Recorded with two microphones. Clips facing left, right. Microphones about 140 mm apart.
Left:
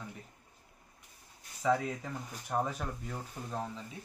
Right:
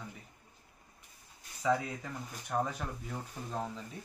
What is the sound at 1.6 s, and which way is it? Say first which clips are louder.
Speech: left 1 dB; 5° left (ahead or behind).